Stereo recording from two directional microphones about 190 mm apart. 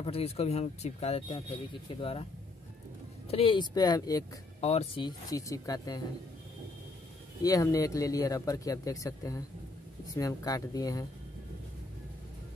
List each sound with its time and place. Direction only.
0.0 s speech: 30° left (ahead or behind)
3.3 s speech: 30° left (ahead or behind)
4.6 s speech: 35° left (ahead or behind); by 5.9 s 20° left (ahead or behind)
7.4 s speech: 20° left (ahead or behind)